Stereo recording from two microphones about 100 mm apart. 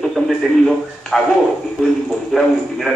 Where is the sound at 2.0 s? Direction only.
Centre (ahead or behind).